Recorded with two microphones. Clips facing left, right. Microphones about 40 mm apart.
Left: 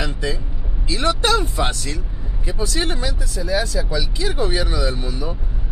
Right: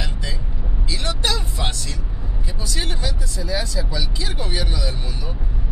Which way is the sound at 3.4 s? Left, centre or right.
Centre.